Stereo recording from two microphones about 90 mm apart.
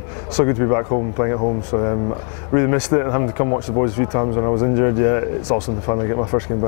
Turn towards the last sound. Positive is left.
turn(degrees=25)  # may be behind; listen again after turning